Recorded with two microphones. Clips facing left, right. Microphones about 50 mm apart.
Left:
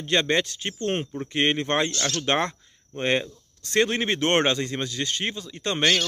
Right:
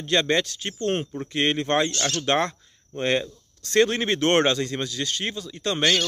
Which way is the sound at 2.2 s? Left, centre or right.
Centre.